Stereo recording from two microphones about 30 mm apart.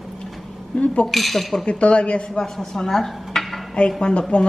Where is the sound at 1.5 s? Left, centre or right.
Left.